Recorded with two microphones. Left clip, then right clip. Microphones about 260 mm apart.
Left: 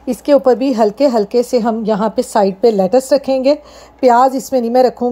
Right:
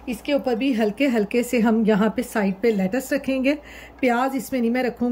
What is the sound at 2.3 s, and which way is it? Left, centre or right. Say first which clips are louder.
A woman's voice: left 12 dB; left.